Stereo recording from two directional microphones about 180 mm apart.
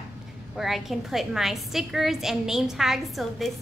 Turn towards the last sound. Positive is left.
turn(degrees=0)  # may be behind; listen again after turning